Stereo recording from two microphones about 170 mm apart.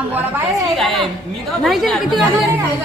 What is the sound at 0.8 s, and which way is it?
A man's voice, centre (ahead or behind).